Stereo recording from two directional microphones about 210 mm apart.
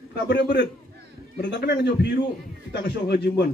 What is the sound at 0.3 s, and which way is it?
A man's voice, 55° left (ahead or behind).